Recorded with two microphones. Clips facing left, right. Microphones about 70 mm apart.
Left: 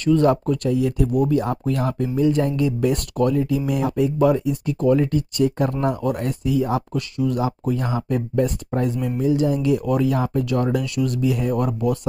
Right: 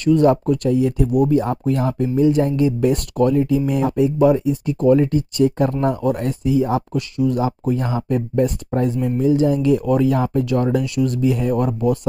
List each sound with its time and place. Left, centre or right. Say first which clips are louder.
0.0 s speech: right 3 dB; centre
0.3 s speech: right 3 dB; right
4.2 s speech: right 3 dB; right